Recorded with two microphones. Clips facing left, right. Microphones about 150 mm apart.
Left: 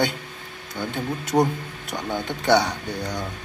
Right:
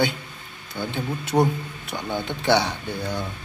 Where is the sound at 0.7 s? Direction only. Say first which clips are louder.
Even; centre (ahead or behind).